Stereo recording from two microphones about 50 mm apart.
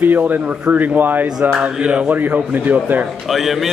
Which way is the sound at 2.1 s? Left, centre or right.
Right.